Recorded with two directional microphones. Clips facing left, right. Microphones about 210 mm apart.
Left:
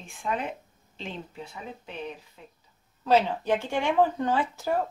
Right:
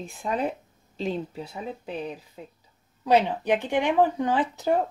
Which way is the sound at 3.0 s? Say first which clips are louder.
Right 1 dB; 15° right (ahead or behind).